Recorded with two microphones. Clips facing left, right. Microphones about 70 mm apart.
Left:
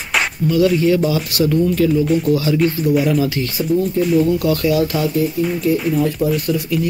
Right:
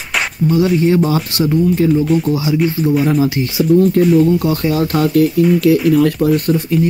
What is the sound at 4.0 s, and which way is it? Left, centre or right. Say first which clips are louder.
Speech: right 6 dB; right.